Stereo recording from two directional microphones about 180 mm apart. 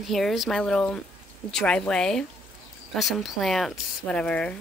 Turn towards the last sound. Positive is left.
turn(degrees=5)  # may be behind; listen again after turning